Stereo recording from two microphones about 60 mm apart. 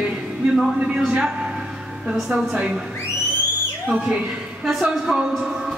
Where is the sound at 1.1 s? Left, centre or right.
Centre.